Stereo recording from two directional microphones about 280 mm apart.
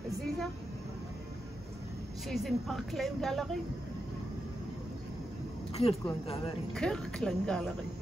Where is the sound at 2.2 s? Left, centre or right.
Centre.